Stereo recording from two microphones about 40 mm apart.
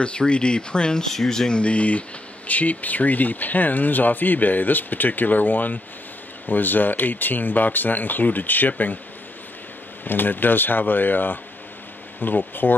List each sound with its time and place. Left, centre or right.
0.0 s speech: left
1.5 s speech: left
10.0 s speech: left